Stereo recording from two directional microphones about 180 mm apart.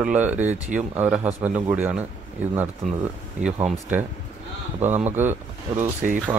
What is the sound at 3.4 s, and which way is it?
Speech, 10° right (ahead or behind).